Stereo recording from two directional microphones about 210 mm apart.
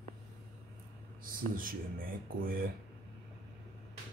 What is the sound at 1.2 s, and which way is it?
Speech, 40° right (ahead or behind).